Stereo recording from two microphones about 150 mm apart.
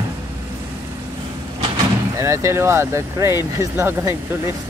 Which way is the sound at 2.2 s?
20° right (ahead or behind).